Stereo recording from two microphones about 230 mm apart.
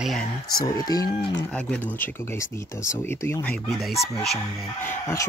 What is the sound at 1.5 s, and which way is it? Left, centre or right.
Speech, centre.